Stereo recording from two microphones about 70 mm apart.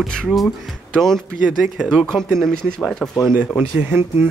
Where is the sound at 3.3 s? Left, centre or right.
Right.